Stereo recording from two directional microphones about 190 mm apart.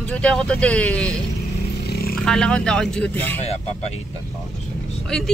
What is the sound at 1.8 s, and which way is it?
Vehicle, 55° left (ahead or behind).